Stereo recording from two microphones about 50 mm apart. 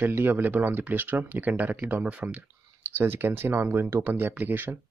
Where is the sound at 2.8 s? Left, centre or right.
Right.